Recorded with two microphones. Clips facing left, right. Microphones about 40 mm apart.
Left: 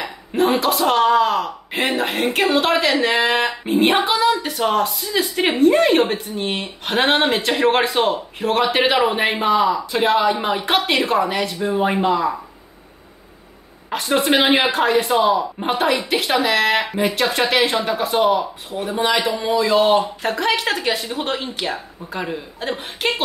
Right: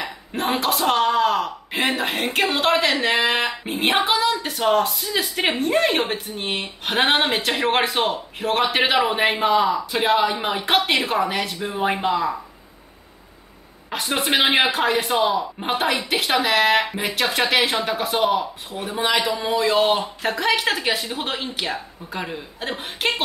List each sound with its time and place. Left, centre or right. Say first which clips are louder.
0.0 s a man's voice: left 6 dB; centre
13.8 s a man's voice: left 5 dB; centre